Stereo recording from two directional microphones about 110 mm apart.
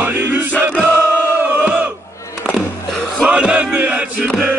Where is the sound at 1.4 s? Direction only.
15° right (ahead or behind).